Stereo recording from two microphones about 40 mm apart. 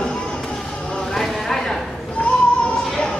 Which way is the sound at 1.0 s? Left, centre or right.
Centre.